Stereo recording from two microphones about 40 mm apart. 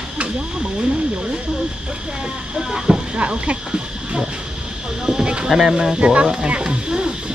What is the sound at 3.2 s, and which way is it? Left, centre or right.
Speech, right.